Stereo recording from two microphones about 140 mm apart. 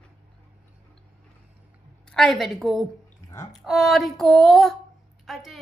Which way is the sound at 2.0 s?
5° left (ahead or behind).